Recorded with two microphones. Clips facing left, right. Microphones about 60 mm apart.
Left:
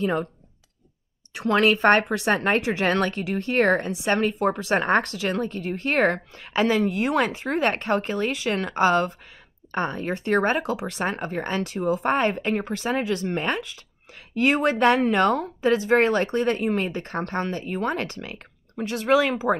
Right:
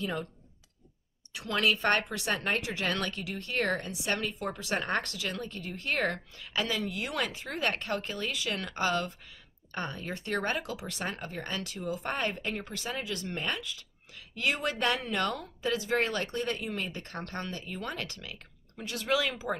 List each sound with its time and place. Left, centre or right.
0.0 s speech: left
1.3 s speech: left